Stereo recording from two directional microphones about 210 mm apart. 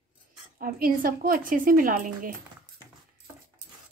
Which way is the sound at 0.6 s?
45° right (ahead or behind).